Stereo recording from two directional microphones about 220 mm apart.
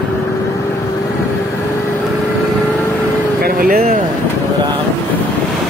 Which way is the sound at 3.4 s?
40° right (ahead or behind).